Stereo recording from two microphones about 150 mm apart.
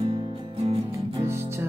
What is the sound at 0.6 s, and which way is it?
Music, 45° right (ahead or behind).